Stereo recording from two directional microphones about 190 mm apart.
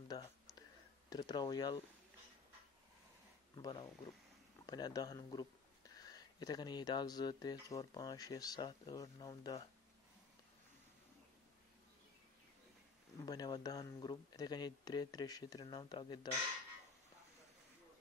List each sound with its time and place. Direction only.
0.1 s a sound: 20° left (ahead or behind)
1.1 s speech: 20° left (ahead or behind)
3.5 s speech: 20° left (ahead or behind)
13.2 s speech: 20° left (ahead or behind)